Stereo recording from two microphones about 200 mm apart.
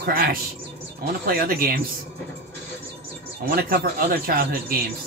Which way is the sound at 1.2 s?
45° right (ahead or behind).